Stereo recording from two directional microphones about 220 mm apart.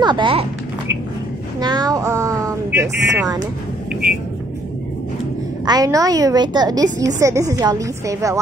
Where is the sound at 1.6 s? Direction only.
20° right (ahead or behind).